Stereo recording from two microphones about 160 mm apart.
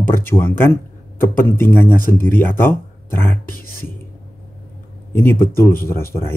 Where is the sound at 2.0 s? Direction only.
60° left (ahead or behind).